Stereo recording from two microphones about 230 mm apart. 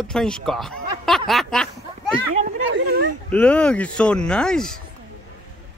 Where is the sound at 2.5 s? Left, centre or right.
Right.